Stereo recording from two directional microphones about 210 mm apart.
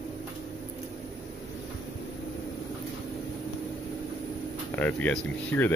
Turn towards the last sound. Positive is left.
turn(degrees=10)  # may be behind; listen again after turning